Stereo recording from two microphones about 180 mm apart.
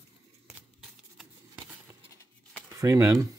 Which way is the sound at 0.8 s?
5° right (ahead or behind).